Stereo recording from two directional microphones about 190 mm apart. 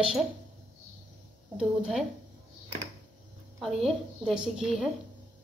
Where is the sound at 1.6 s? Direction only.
5° right (ahead or behind).